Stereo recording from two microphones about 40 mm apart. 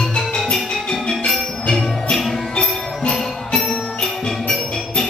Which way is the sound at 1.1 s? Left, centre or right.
Centre.